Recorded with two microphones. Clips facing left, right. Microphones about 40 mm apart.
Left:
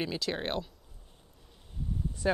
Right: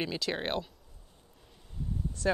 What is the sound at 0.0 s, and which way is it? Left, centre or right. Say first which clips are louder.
Speech: even; centre.